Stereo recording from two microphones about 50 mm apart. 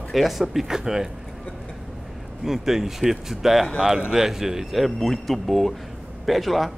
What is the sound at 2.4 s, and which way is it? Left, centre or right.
Speech, centre.